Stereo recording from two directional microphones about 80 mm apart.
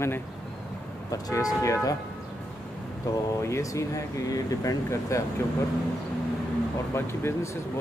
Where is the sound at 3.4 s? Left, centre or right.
Left.